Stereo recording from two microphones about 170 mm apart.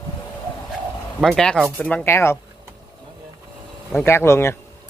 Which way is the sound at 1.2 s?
Centre (ahead or behind).